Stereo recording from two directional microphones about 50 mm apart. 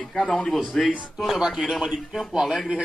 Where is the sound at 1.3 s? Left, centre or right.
Centre.